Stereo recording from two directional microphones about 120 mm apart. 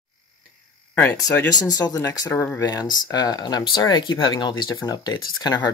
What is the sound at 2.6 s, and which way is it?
Speech, 35° left (ahead or behind).